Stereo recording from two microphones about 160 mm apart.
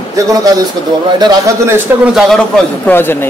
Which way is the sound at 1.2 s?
25° right (ahead or behind).